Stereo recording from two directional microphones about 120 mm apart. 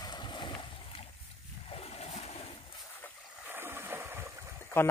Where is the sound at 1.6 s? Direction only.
55° left (ahead or behind).